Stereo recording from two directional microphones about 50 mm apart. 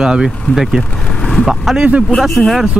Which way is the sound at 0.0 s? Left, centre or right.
Centre.